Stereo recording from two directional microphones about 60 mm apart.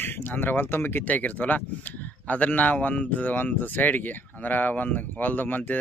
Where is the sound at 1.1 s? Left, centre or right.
Left.